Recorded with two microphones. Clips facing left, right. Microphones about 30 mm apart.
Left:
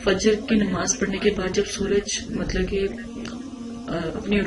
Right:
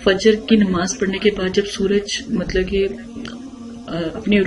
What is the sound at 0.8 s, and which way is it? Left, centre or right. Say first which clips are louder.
Speech: right 4 dB; centre.